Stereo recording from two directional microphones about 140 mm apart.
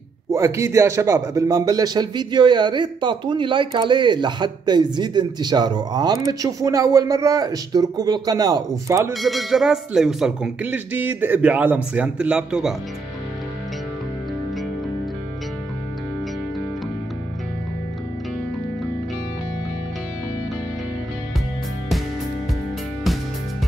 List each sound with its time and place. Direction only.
0.3 s a man's voice: 20° right (ahead or behind)
9.1 s speech: centre (ahead or behind)